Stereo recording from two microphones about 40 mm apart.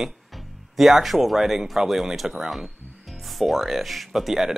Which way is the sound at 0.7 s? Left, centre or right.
Centre.